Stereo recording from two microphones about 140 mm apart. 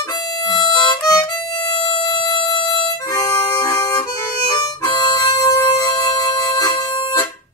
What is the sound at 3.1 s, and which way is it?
Harmonica, 25° left (ahead or behind).